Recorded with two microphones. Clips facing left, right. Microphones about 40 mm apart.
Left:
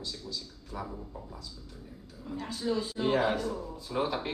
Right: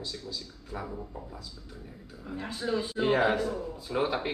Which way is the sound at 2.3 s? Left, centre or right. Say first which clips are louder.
Right 1 dB; right.